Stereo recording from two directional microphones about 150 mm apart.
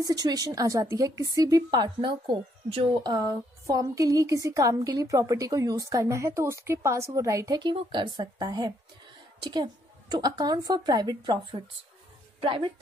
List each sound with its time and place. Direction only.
0.0 s a woman's voice: 25° right (ahead or behind)